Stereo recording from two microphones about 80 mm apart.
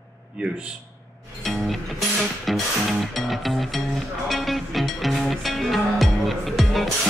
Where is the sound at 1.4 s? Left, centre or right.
Centre.